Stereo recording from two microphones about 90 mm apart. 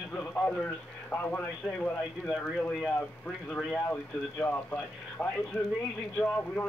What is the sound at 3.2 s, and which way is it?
Speech, 10° left (ahead or behind).